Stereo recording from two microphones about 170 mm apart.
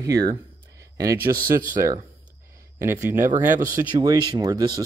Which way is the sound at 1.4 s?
55° right (ahead or behind).